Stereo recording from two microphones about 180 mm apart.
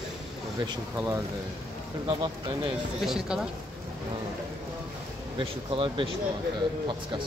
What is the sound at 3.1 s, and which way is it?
Speech, centre (ahead or behind).